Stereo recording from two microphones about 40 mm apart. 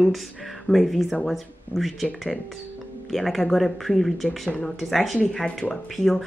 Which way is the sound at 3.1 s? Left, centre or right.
Centre.